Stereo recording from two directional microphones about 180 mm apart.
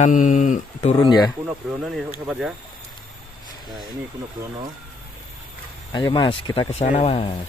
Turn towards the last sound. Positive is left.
turn(degrees=30)  # may be behind; listen again after turning